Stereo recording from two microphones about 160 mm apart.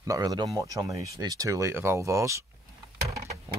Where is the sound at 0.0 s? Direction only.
25° right (ahead or behind).